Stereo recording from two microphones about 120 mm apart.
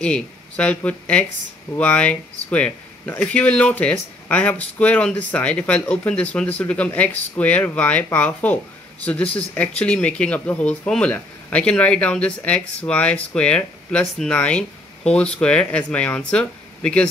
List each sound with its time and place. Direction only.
0.0 s speech: 10° left (ahead or behind)